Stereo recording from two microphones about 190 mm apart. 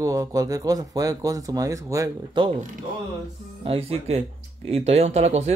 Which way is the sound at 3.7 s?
30° right (ahead or behind).